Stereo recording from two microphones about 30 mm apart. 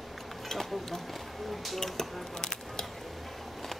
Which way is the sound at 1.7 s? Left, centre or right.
Centre.